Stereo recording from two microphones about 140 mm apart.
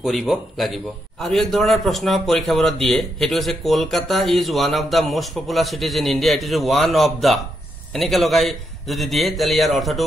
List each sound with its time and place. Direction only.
0.0 s a man's voice: centre (ahead or behind)